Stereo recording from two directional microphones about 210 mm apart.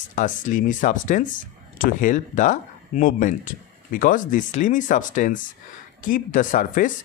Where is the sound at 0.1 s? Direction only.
40° left (ahead or behind).